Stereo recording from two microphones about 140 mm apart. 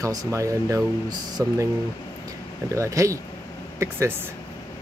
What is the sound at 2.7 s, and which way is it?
Speech, 20° right (ahead or behind).